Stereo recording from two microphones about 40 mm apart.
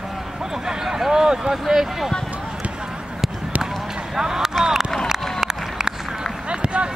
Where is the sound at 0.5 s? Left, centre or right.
Centre.